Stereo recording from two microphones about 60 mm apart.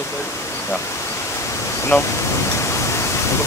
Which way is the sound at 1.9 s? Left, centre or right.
Left.